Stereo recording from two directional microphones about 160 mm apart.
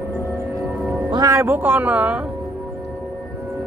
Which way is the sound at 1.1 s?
20° right (ahead or behind).